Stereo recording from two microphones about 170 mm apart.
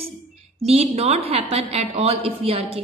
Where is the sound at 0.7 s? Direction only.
35° right (ahead or behind).